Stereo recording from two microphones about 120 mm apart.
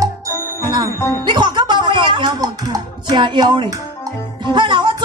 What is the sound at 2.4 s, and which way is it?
Speech, 30° right (ahead or behind).